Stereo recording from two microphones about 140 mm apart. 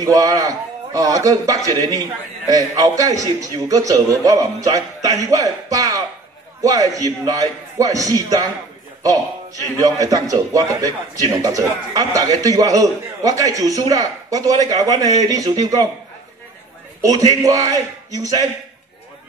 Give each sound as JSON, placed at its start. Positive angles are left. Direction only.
{"t": 0.0, "sound": "a man's voice", "side_deg": -25}
{"t": 9.8, "sound": "a man's voice", "side_deg": -25}
{"t": 17.3, "sound": "a man's voice", "side_deg": -25}